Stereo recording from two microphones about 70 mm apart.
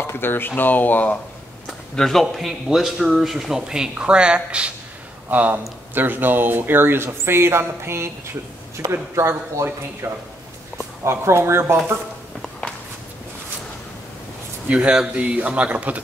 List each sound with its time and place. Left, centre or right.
0.0 s speech: left
2.0 s speech: centre; by 11.7 s right
14.7 s speech: centre